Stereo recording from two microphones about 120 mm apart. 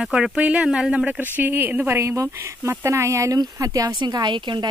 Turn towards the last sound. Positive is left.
turn(degrees=-40)  # may be behind; listen again after turning